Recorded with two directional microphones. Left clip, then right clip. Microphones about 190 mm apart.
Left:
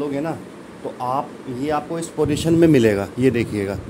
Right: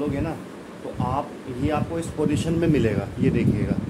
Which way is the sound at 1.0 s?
50° left (ahead or behind).